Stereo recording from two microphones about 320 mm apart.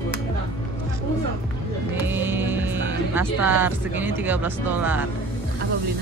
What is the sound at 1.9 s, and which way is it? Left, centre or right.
Music, centre.